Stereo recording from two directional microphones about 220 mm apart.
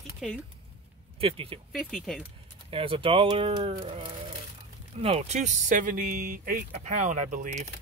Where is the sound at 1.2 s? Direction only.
25° right (ahead or behind).